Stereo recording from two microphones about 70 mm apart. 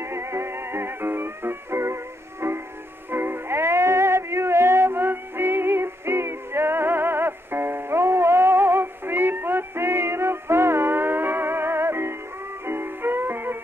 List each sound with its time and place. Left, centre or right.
0.0 s music: right